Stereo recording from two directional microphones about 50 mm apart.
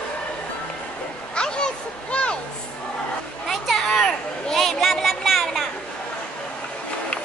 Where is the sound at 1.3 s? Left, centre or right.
Centre.